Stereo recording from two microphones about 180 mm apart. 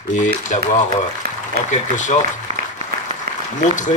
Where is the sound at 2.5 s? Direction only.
35° right (ahead or behind).